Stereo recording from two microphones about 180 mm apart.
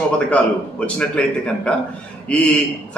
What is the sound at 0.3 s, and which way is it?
Speech, 5° left (ahead or behind).